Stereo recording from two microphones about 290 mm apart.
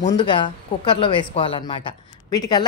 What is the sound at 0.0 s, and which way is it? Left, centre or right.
Speech, centre.